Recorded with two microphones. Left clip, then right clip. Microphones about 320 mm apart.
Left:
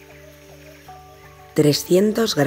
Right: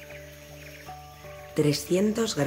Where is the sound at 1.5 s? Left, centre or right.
Left.